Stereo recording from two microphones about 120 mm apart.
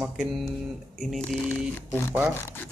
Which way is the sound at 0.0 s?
5° right (ahead or behind).